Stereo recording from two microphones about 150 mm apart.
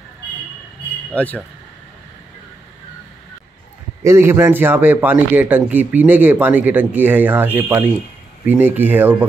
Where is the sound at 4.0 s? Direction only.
20° right (ahead or behind).